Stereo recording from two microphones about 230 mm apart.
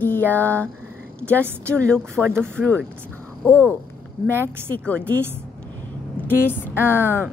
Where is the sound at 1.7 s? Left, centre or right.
Centre.